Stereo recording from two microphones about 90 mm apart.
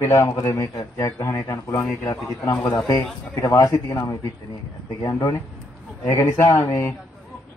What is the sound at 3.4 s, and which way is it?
Speech, 40° left (ahead or behind).